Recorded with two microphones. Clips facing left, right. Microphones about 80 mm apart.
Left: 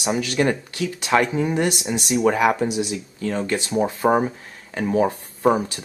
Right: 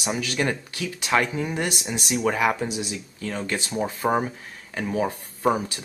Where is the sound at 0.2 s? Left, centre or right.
Centre.